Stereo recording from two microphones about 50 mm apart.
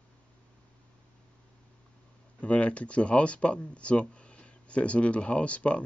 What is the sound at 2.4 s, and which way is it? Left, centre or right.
Speech, left.